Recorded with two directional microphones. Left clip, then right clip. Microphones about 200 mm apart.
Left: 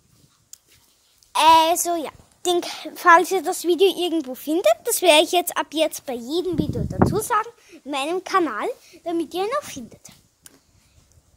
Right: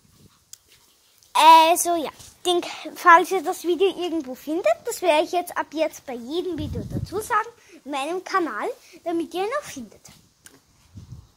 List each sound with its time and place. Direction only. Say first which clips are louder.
0.5 s dog: even; 5° left (ahead or behind)
1.3 s a woman's voice: right 2 dB; 5° left (ahead or behind)
2.4 s a child's voice: left 1 dB; 15° left (ahead or behind)
7.1 s a child's voice: left 4 dB; 40° left (ahead or behind)
7.3 s a woman's voice: left 1 dB; 20° left (ahead or behind)
8.8 s speech: left 1 dB; 10° left (ahead or behind); by 10.1 s 25° left (ahead or behind)